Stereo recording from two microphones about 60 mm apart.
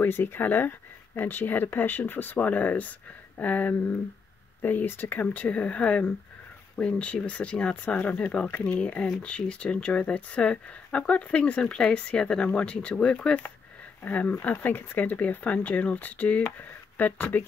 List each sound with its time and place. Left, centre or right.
0.0 s speech: left
5.2 s speech: left